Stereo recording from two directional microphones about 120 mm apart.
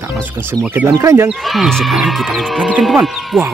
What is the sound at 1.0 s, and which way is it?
Speech, 25° right (ahead or behind).